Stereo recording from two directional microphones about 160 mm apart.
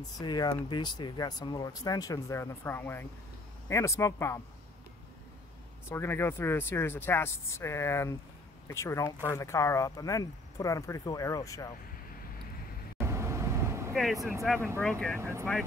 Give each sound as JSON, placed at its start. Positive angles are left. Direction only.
{"t": 0.0, "sound": "speech", "side_deg": 25}
{"t": 5.9, "sound": "speech", "side_deg": 15}
{"t": 13.0, "sound": "vehicle", "side_deg": -15}
{"t": 14.5, "sound": "speech", "side_deg": 0}